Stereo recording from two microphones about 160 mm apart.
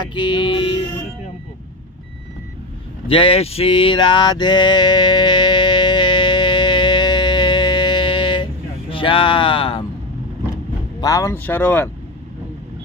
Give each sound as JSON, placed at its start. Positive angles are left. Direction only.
{"t": 0.0, "sound": "vehicle", "side_deg": 30}
{"t": 3.1, "sound": "male singing", "side_deg": 35}
{"t": 8.9, "sound": "speech", "side_deg": 35}
{"t": 11.0, "sound": "speech", "side_deg": 20}